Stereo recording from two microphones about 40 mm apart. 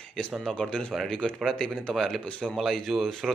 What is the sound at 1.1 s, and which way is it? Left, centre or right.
Speech, left.